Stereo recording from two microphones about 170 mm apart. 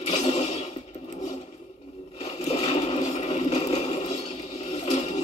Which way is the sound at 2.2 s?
40° left (ahead or behind).